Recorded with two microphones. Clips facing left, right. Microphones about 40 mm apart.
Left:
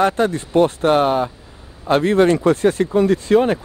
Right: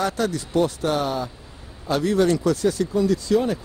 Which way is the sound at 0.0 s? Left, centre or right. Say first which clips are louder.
Left 7 dB; left.